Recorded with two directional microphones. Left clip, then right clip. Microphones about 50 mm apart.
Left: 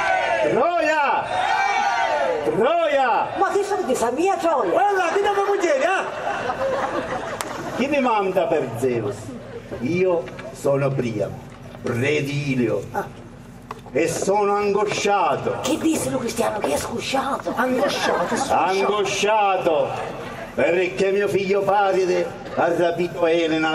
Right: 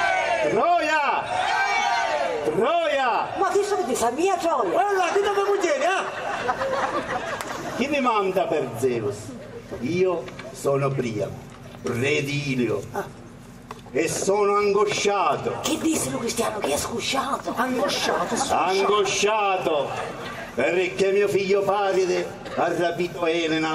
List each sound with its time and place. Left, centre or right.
0.0 s crowd: centre
2.6 s a man's voice: right
10.6 s a man's voice: right